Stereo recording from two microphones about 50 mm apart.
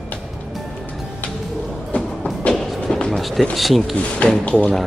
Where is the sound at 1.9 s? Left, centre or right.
Left.